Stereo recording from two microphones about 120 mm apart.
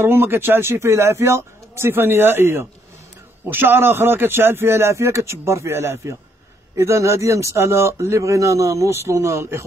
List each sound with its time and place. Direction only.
0.0 s speech: 20° right (ahead or behind)